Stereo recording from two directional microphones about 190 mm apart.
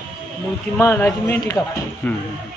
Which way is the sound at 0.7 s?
10° left (ahead or behind).